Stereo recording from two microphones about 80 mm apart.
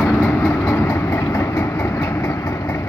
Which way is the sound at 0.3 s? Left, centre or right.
Left.